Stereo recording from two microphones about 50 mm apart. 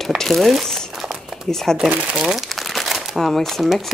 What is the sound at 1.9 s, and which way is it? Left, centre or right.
Speech, right.